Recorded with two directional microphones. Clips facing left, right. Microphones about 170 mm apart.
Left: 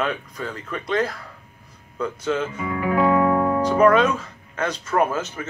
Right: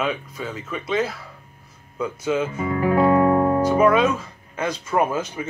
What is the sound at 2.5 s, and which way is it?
Music, 35° right (ahead or behind).